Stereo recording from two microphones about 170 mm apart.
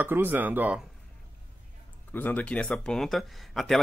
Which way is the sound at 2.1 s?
10° left (ahead or behind).